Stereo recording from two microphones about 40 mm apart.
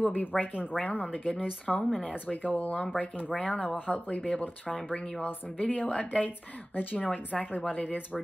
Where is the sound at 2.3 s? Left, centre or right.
Left.